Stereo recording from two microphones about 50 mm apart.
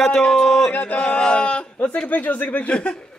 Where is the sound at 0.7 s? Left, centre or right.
Left.